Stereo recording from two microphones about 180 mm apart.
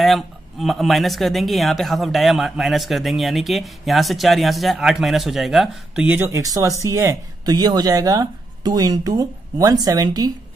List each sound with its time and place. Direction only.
0.0 s speech: centre (ahead or behind); by 10.3 s 20° right (ahead or behind)